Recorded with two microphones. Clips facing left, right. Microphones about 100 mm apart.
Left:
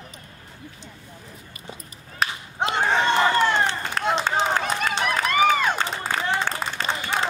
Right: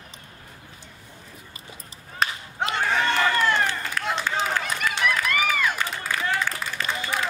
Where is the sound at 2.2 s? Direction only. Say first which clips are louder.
Even; centre (ahead or behind).